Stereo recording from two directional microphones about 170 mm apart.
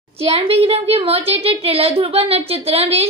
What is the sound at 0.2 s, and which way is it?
A woman's voice, 35° right (ahead or behind).